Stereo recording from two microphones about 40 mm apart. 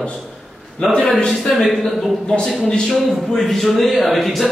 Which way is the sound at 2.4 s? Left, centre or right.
Left.